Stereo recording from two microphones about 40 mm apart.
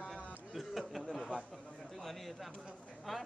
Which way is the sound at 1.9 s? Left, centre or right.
Centre.